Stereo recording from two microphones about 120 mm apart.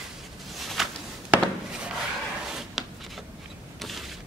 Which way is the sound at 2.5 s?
5° right (ahead or behind).